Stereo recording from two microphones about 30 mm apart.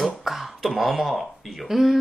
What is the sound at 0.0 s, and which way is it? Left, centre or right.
A woman's voice, centre.